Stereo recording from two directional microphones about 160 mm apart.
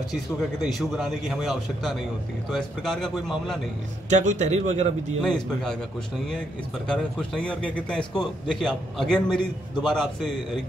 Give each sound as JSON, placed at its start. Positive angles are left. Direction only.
{"t": 0.7, "sound": "a man's voice", "side_deg": 0}
{"t": 4.1, "sound": "speech", "side_deg": -45}
{"t": 5.2, "sound": "a man's voice", "side_deg": 0}
{"t": 6.9, "sound": "a man's voice", "side_deg": 5}